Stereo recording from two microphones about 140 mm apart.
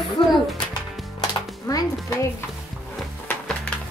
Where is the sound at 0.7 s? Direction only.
25° left (ahead or behind).